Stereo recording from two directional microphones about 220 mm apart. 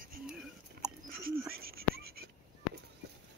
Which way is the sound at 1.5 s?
45° right (ahead or behind).